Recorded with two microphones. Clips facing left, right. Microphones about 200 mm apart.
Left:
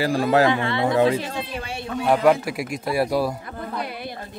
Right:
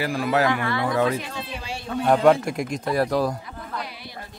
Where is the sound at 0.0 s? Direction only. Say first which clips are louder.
Left 4 dB; 30° left (ahead or behind).